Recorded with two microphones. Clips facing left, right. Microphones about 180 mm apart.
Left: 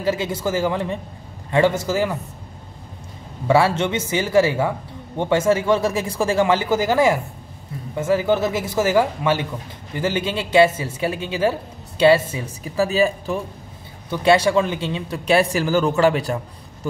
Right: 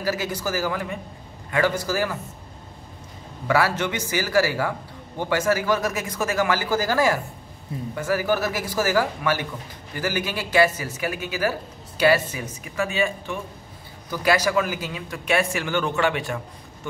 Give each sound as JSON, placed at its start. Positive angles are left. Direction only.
{"t": 0.0, "sound": "speech", "side_deg": 25}
{"t": 3.4, "sound": "a man's voice", "side_deg": 25}